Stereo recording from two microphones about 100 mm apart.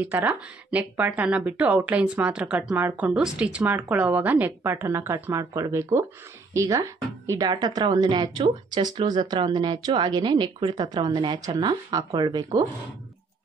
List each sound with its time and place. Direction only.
0.0 s speech: 20° right (ahead or behind)
3.2 s a woman's voice: 5° right (ahead or behind); by 11.3 s 50° right (ahead or behind)
11.3 s speech: 40° right (ahead or behind)